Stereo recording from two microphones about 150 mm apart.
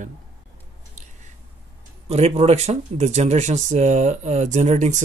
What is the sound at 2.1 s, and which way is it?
Speech, 45° right (ahead or behind).